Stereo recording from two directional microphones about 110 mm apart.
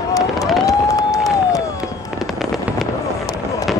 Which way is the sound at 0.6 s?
30° left (ahead or behind).